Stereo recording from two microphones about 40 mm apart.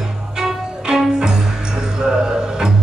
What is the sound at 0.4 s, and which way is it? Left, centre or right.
Music, centre.